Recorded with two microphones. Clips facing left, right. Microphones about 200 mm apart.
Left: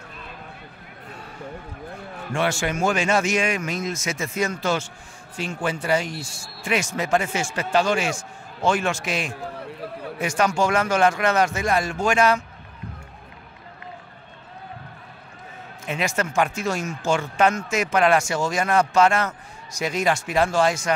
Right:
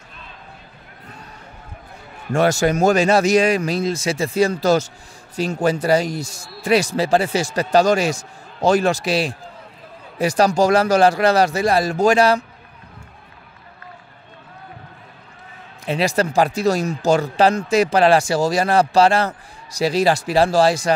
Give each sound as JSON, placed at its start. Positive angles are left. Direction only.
{"t": 2.3, "sound": "a man's voice", "side_deg": -40}
{"t": 9.4, "sound": "a sound", "side_deg": 70}
{"t": 10.1, "sound": "a man's voice", "side_deg": -35}
{"t": 15.8, "sound": "a man's voice", "side_deg": -35}